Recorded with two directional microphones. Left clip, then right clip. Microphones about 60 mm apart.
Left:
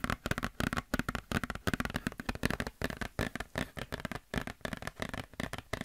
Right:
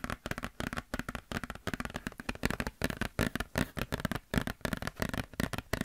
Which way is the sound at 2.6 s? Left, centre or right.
Centre.